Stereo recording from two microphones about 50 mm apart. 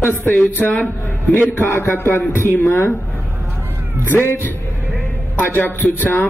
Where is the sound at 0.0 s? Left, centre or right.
Left.